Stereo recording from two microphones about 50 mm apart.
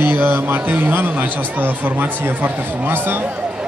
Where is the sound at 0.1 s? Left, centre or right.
Right.